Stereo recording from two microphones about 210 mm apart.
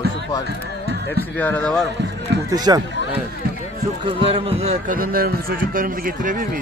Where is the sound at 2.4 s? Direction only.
20° right (ahead or behind).